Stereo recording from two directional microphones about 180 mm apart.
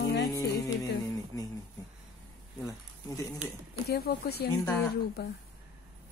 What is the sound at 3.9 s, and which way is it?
A woman's voice, 60° left (ahead or behind).